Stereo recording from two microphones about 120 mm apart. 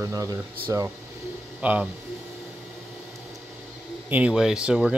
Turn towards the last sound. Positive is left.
turn(degrees=-5)  # may be behind; listen again after turning